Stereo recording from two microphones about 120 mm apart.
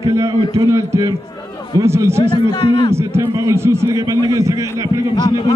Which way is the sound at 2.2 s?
45° left (ahead or behind).